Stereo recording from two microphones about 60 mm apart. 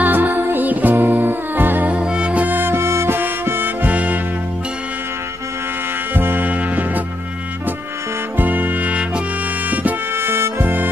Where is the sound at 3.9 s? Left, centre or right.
Right.